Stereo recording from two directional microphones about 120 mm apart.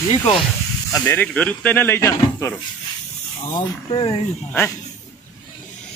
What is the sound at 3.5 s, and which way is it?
Speech, 45° left (ahead or behind).